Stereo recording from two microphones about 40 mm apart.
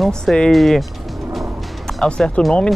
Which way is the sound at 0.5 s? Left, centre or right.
Centre.